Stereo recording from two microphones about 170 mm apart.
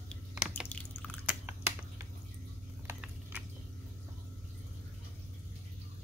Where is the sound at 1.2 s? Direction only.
15° right (ahead or behind).